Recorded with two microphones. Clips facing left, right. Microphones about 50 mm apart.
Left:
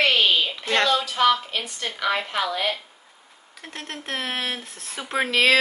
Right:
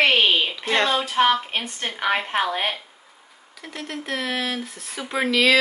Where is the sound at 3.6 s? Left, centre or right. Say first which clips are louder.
Right 3 dB; left.